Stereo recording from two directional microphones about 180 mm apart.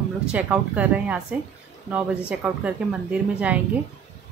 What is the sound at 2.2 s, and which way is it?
A woman's voice, 5° right (ahead or behind).